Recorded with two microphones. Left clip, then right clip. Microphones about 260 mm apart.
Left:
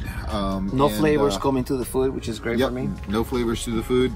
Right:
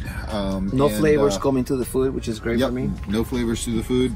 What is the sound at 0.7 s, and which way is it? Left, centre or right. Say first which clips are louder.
Speech: right 2 dB; left.